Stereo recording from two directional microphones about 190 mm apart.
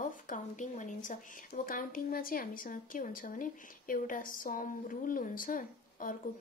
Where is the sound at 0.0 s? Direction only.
45° left (ahead or behind).